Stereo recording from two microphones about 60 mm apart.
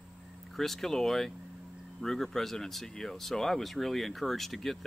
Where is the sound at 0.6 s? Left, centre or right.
Centre.